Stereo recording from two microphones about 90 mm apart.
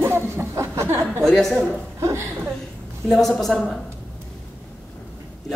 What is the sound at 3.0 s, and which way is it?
Speech, 10° left (ahead or behind).